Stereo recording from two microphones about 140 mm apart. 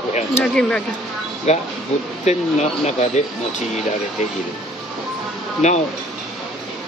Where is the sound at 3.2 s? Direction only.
60° left (ahead or behind).